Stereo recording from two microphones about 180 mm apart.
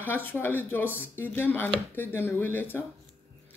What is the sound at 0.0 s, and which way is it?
Speech, 10° left (ahead or behind).